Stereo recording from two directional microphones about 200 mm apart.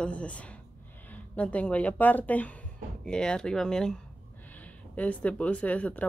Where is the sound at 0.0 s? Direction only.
5° left (ahead or behind).